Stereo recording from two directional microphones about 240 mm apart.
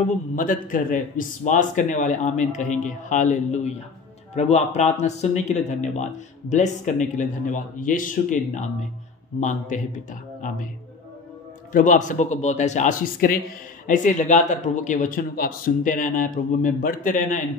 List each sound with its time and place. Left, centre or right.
0.4 s a man's voice: left
11.7 s speech: left